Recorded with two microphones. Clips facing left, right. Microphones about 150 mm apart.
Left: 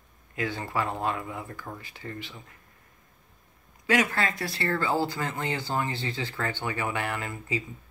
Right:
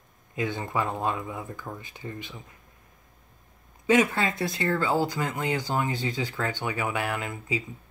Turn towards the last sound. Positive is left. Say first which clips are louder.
# right 2 dB
turn(degrees=-10)  # may be behind; listen again after turning